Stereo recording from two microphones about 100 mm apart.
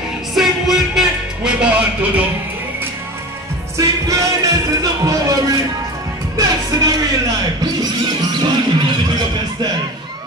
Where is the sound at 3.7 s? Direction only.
35° right (ahead or behind).